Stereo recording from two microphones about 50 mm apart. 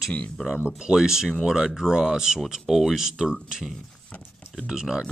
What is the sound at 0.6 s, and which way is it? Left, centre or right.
Speech, centre.